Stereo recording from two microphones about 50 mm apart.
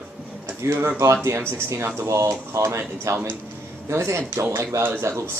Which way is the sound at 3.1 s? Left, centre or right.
Right.